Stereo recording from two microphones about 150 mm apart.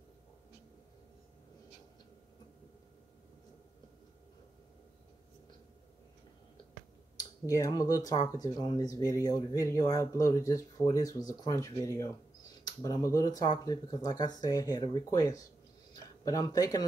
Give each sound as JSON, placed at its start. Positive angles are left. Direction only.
{"t": 7.2, "sound": "speech", "side_deg": 20}